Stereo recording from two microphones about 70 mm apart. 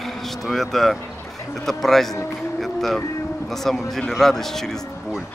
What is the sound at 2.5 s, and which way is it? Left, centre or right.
Music, centre.